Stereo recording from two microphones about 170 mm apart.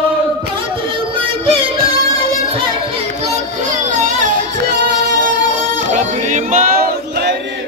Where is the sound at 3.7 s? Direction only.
50° right (ahead or behind).